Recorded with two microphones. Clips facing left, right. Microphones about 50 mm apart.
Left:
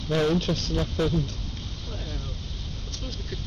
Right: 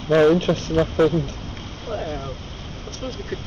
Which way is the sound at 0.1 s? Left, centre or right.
Right.